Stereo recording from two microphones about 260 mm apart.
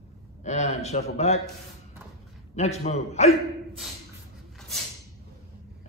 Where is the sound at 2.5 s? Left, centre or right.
Left.